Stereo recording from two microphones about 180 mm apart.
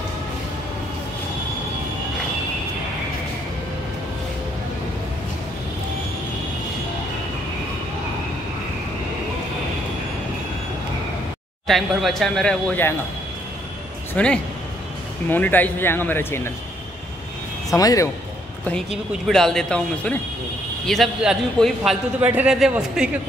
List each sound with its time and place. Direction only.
11.6 s speech: centre (ahead or behind)
14.1 s speech: 5° left (ahead or behind)
17.7 s speech: 20° left (ahead or behind)
19.2 s speech: 5° left (ahead or behind)